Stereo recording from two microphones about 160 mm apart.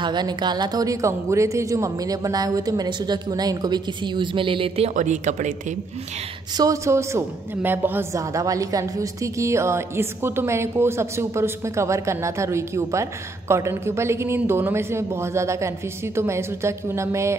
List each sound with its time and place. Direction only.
0.0 s speech: 25° right (ahead or behind)
4.9 s speech: 50° right (ahead or behind)
6.5 s a woman's voice: 20° right (ahead or behind)